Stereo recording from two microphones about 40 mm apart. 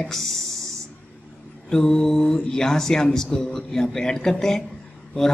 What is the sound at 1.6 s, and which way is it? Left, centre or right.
A man's voice, centre.